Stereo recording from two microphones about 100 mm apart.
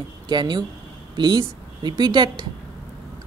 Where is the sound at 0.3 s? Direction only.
50° right (ahead or behind).